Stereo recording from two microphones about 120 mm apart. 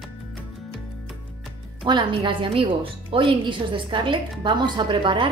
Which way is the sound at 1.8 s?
40° right (ahead or behind).